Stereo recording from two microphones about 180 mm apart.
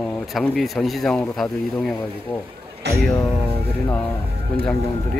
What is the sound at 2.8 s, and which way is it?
Speech, 70° right (ahead or behind).